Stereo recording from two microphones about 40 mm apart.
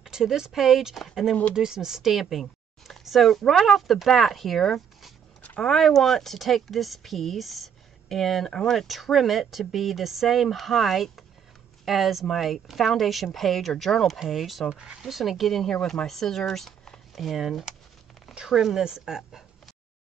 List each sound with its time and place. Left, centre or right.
0.0 s speech: centre
1.5 s speech: centre
8.8 s speech: centre
14.7 s speech: right
15.0 s speech: centre
15.7 s speech: centre
17.1 s speech: centre